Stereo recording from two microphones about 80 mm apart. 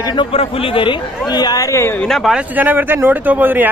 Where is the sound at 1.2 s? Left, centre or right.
Left.